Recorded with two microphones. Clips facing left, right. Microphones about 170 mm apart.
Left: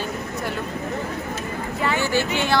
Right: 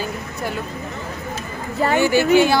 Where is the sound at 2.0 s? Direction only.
10° right (ahead or behind).